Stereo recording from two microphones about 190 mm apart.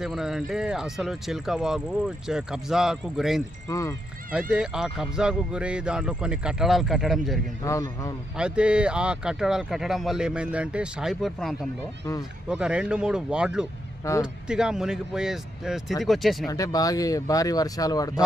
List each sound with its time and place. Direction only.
0.0 s speech: 5° right (ahead or behind)
3.6 s speech: 15° left (ahead or behind)
4.3 s speech: 5° right (ahead or behind)
7.6 s a man's voice: 15° left (ahead or behind)
8.4 s speech: 5° right (ahead or behind)
16.4 s speech: 20° left (ahead or behind)